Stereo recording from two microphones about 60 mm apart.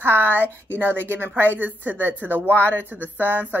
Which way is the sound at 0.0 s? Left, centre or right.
Right.